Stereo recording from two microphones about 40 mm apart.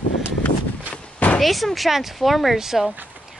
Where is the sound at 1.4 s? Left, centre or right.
Centre.